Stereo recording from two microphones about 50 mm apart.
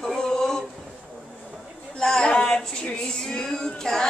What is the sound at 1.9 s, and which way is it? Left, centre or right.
Speech, centre.